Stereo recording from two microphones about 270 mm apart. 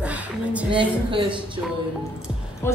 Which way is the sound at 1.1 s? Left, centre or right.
Centre.